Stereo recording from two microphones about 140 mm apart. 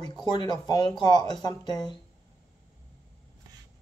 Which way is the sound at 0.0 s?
30° left (ahead or behind).